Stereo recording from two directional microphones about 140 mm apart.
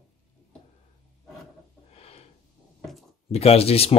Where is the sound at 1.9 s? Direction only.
45° left (ahead or behind).